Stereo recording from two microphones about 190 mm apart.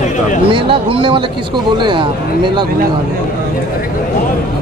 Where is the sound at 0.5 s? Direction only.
25° right (ahead or behind).